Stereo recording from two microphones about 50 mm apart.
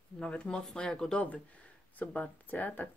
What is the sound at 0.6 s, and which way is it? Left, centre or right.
Speech, centre.